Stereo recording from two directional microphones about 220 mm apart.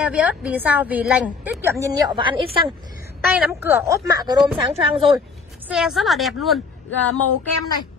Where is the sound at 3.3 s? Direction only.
10° right (ahead or behind).